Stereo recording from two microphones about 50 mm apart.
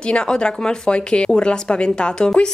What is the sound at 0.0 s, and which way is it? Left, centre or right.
Speech, centre.